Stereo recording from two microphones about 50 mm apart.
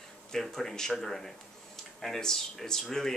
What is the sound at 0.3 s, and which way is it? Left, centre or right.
Speech, centre.